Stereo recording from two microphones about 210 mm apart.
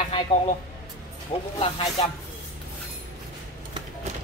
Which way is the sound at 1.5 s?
25° left (ahead or behind).